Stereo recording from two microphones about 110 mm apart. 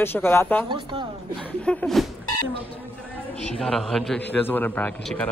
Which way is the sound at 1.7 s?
5° left (ahead or behind).